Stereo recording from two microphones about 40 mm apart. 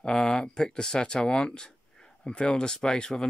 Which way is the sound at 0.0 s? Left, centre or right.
Centre.